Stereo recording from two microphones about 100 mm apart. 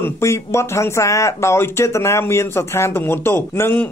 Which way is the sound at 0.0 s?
25° left (ahead or behind).